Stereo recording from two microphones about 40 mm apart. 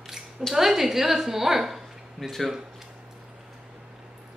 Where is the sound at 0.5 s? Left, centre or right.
Centre.